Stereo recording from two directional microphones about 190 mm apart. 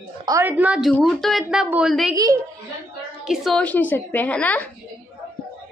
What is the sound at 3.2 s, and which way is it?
A woman's voice, centre (ahead or behind).